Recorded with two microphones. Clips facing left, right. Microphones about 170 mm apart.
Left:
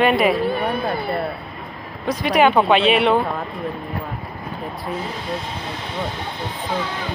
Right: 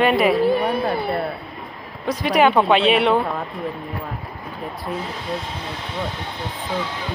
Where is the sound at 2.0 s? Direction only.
15° left (ahead or behind).